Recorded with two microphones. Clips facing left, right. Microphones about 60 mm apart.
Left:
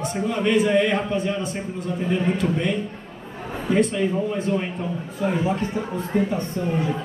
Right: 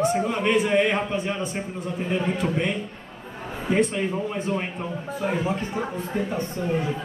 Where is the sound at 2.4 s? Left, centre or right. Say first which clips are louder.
Left 2 dB; right.